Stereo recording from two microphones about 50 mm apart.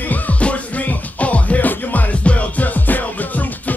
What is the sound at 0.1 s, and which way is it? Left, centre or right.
Music, left.